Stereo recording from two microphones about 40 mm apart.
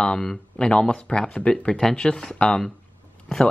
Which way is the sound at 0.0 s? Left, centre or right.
Left.